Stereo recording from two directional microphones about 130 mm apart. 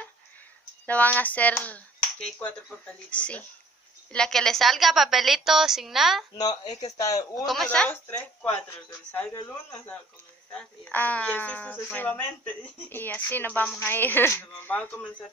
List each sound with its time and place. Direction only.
0.8 s a woman's voice: 10° left (ahead or behind)
6.3 s speech: 30° left (ahead or behind)
7.4 s a woman's voice: 5° left (ahead or behind)
10.5 s speech: 10° left (ahead or behind)